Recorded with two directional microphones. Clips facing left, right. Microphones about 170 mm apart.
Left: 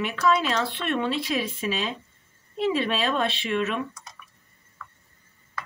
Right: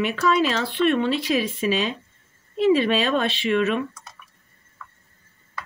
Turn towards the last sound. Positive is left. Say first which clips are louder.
# right 5 dB
turn(degrees=-90)